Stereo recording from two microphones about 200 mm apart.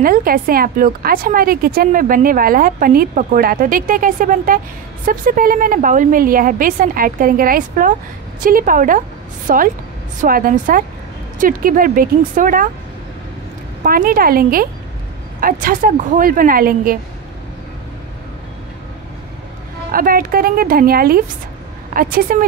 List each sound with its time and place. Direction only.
0.0 s a woman's voice: 45° right (ahead or behind)
13.8 s a woman's voice: 45° right (ahead or behind)
19.9 s a woman's voice: 45° right (ahead or behind)